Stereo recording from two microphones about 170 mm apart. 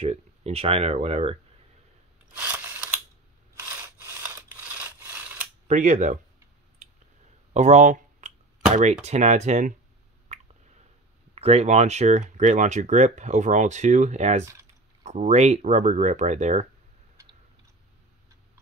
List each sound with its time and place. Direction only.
0.0 s speech: 35° right (ahead or behind)
2.3 s a sound: 10° right (ahead or behind)
3.6 s sawing: 15° right (ahead or behind)
5.7 s speech: 45° right (ahead or behind)
7.5 s speech: 45° right (ahead or behind)
10.3 s squish: 40° right (ahead or behind)
11.3 s speech: 35° right (ahead or behind)
14.4 s speech: 15° right (ahead or behind)
15.0 s speech: 45° right (ahead or behind)